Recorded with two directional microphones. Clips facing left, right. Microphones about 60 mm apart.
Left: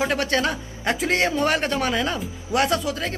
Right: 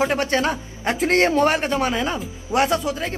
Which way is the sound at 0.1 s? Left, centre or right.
Right.